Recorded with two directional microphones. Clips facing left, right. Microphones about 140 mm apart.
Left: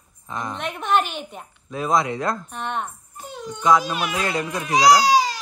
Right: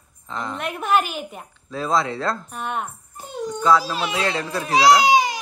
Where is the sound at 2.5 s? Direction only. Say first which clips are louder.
Even; 5° right (ahead or behind).